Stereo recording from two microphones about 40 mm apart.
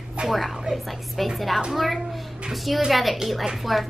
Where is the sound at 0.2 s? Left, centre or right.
Right.